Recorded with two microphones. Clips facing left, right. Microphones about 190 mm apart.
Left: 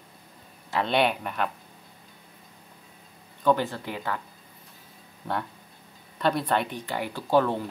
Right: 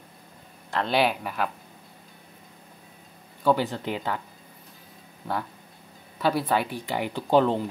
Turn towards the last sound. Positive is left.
turn(degrees=-20)  # may be behind; listen again after turning